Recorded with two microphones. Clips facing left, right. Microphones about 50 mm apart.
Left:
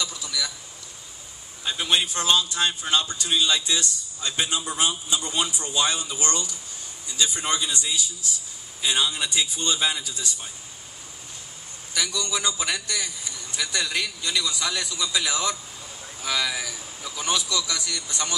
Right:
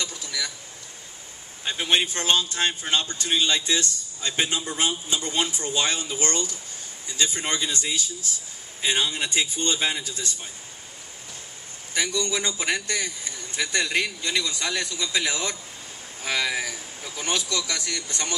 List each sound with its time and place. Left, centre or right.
0.0 s a sound: right
1.6 s a man's voice: right
5.7 s a man's voice: right
8.8 s a man's voice: right
11.9 s a man's voice: right